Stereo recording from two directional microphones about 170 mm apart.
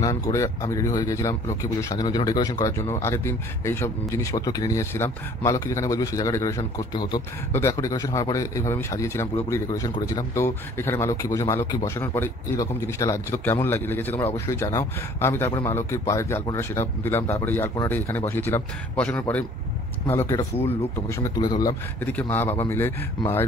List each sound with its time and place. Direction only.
0.0 s a man's voice: 20° left (ahead or behind)
22.0 s a man's voice: 10° left (ahead or behind)